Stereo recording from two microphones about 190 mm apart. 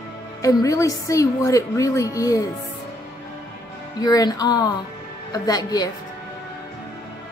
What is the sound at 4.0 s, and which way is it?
A woman's voice, 20° left (ahead or behind).